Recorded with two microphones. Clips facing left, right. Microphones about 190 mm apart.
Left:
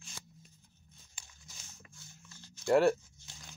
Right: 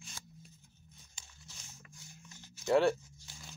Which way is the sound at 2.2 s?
20° right (ahead or behind).